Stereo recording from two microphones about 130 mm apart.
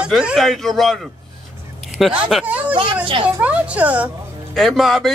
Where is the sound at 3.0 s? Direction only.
40° right (ahead or behind).